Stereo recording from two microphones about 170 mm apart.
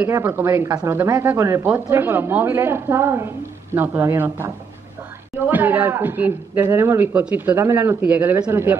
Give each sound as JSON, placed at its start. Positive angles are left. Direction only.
{"t": 0.0, "sound": "speech", "side_deg": -10}
{"t": 5.5, "sound": "speech", "side_deg": -10}